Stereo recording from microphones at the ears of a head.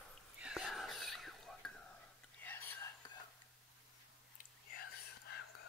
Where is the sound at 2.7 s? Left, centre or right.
Left.